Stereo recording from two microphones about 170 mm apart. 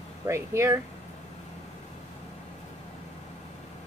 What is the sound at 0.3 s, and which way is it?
Speech, 15° right (ahead or behind).